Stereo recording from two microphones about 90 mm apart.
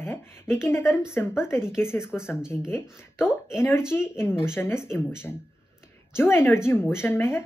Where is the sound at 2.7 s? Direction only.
25° left (ahead or behind).